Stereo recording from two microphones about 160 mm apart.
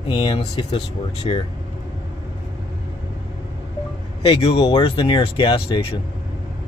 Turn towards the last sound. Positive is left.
turn(degrees=30)  # may be behind; listen again after turning